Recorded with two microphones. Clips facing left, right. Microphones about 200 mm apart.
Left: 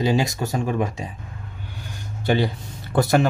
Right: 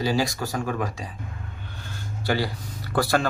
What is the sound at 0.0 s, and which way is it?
Speech, 20° left (ahead or behind).